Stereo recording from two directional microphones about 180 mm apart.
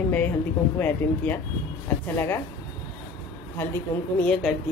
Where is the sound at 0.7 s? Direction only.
10° left (ahead or behind).